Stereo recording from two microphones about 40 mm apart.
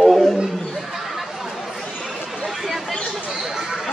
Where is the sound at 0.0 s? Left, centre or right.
Centre.